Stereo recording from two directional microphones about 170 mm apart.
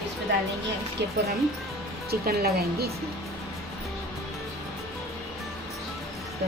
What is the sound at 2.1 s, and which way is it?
Speech, 65° right (ahead or behind).